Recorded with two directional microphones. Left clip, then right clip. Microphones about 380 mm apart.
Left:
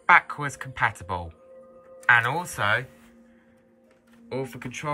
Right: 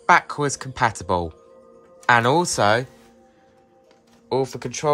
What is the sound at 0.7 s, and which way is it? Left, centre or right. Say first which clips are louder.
Speech: right 5 dB; centre.